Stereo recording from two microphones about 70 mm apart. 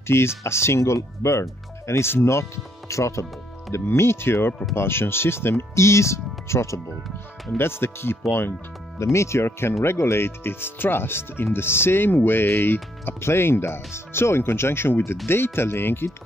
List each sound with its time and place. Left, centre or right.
0.0 s speech: left
7.5 s speech: left
8.9 s speech: left